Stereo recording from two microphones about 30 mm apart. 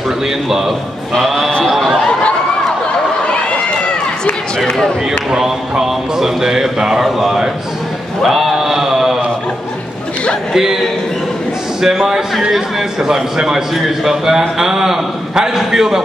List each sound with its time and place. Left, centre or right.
0.5 s speech: centre
1.1 s a sound: centre
5.4 s speech: centre
8.3 s a sound: centre
10.5 s speech: centre
11.8 s a man's voice: centre